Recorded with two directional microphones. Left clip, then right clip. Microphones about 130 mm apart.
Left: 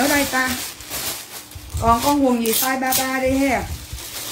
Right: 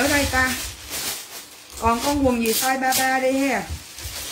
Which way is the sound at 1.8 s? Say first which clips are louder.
Left 3 dB; 20° right (ahead or behind).